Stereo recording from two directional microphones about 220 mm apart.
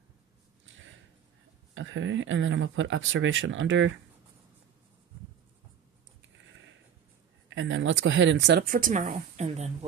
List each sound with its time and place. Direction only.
1.8 s speech: 60° right (ahead or behind)
7.4 s speech: 60° right (ahead or behind); by 9.8 s 30° right (ahead or behind)